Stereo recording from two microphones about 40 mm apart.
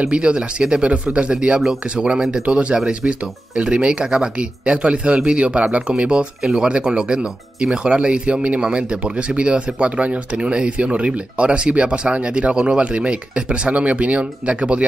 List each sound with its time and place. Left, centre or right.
0.0 s speech: right
5.4 s speech: right
5.9 s speech: centre